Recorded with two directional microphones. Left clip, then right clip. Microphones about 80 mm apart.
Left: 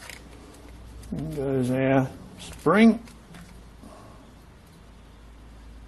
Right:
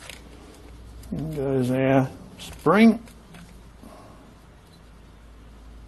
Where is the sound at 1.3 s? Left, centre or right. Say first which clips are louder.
Right 2 dB; centre.